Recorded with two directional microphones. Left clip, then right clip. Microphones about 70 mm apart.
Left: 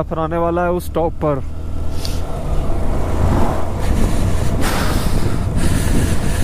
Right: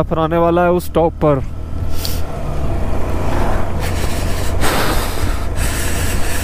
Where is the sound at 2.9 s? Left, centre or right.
Right.